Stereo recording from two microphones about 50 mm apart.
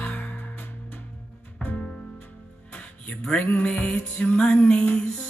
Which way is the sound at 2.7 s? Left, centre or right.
Left.